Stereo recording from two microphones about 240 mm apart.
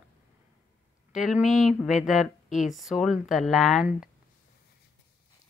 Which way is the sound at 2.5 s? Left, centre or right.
Left.